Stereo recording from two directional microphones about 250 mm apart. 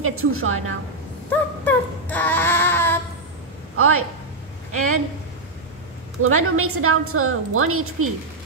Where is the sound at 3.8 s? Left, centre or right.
Right.